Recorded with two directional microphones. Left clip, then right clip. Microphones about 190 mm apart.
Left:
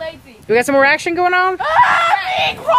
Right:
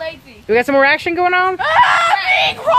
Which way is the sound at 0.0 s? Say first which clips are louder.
Right 2 dB; 5° left (ahead or behind).